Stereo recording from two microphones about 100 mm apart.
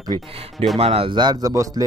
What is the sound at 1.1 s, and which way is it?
Speech, 50° right (ahead or behind).